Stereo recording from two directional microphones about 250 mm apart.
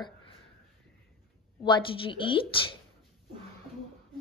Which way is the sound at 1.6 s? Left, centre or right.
Centre.